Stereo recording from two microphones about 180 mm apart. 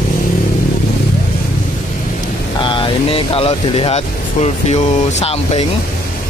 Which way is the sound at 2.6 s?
30° left (ahead or behind).